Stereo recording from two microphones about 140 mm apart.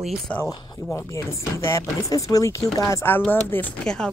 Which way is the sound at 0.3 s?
10° left (ahead or behind).